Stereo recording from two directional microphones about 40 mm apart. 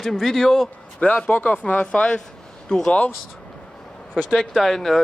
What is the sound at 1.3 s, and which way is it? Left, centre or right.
Speech, left.